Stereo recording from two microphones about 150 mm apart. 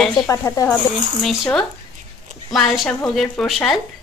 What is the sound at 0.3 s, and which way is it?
Speech, 20° left (ahead or behind).